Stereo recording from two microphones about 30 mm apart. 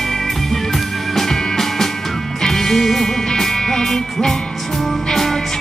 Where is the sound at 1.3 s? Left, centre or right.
Centre.